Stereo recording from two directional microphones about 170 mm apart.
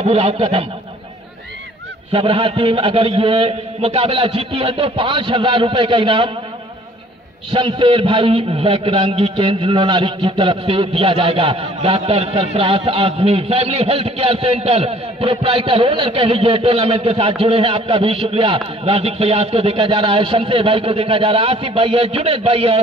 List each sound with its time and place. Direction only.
0.0 s a man's voice: 35° right (ahead or behind)
2.1 s a man's voice: 30° right (ahead or behind)
7.5 s a man's voice: 30° right (ahead or behind)